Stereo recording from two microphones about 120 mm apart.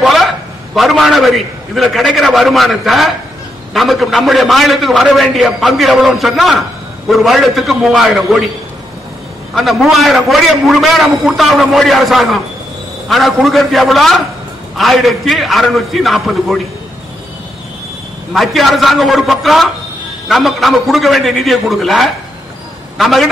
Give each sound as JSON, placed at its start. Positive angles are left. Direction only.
{"t": 0.0, "sound": "a sound", "side_deg": 0}
{"t": 0.7, "sound": "a man's voice", "side_deg": 0}
{"t": 9.6, "sound": "a man's voice", "side_deg": 0}
{"t": 18.3, "sound": "a man's voice", "side_deg": 0}